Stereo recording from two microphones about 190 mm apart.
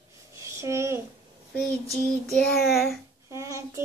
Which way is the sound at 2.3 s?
Centre (ahead or behind).